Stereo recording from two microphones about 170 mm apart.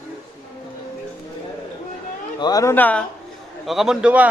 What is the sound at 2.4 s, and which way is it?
Speech, 20° left (ahead or behind).